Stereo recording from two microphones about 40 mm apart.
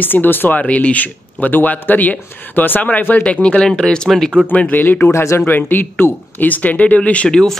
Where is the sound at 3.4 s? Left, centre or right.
Left.